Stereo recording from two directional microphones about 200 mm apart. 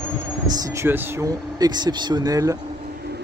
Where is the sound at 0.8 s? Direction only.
5° right (ahead or behind).